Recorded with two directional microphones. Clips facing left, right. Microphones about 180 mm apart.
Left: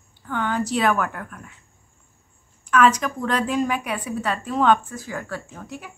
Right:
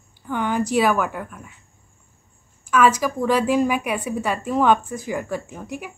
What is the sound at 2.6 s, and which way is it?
A woman's voice, 5° right (ahead or behind).